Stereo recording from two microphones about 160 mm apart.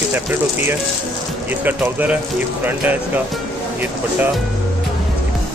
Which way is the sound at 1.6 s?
10° right (ahead or behind).